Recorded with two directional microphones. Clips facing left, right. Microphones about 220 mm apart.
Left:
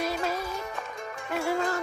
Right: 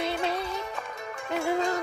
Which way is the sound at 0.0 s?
25° right (ahead or behind).